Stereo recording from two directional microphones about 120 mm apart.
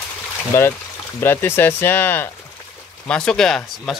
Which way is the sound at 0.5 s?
25° left (ahead or behind).